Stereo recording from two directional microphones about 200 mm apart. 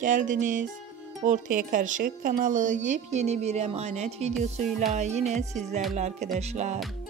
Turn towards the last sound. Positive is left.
turn(degrees=-35)  # may be behind; listen again after turning